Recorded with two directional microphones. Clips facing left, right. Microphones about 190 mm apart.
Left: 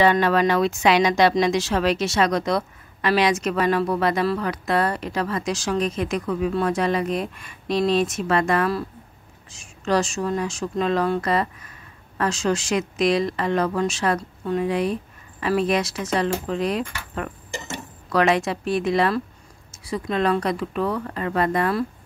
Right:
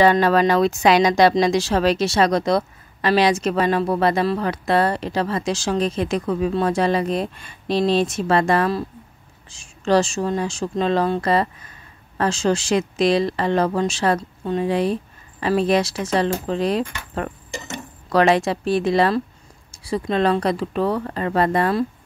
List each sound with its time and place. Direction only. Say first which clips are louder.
0.0 s speech: right 3 dB; 35° right (ahead or behind)